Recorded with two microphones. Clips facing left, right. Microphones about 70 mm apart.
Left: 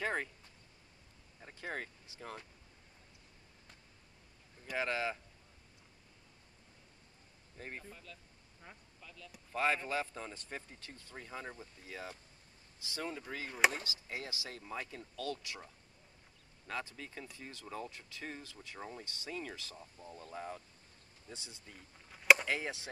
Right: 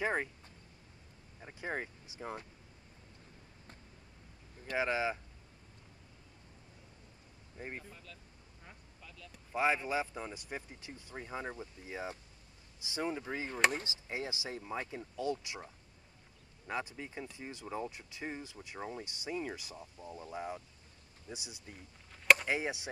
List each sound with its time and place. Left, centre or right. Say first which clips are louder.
0.0 s speech: right 3 dB; centre
1.4 s speech: right 3 dB; centre
4.7 s speech: right 3 dB; centre
7.5 s speech: right 3 dB; centre
7.9 s speech: even; centre
8.6 s a sound: left 1 dB; centre
9.5 s speech: right 2 dB; centre
22.1 s a sound: even; centre
22.5 s speech: right 3 dB; centre